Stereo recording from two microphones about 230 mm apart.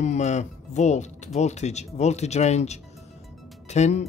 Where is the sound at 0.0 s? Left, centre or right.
Left.